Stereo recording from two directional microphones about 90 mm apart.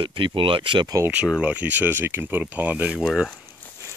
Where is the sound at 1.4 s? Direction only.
15° right (ahead or behind).